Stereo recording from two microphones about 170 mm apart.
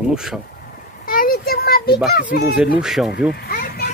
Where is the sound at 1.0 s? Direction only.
55° left (ahead or behind).